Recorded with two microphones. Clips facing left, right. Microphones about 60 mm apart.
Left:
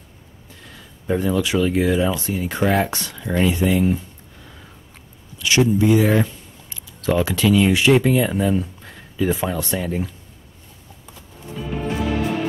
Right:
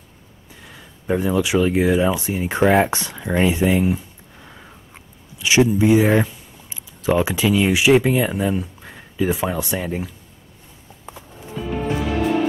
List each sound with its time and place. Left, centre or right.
0.7 s speech: centre
3.9 s a sound: centre
6.2 s speech: centre
11.6 s music: centre